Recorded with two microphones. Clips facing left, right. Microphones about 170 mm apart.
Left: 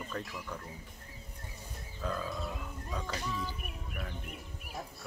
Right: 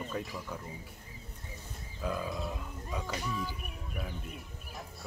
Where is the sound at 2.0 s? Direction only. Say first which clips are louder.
Right 2 dB; 10° right (ahead or behind).